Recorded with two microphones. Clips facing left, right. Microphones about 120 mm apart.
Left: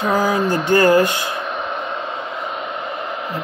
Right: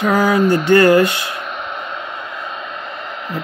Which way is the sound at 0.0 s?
70° right (ahead or behind).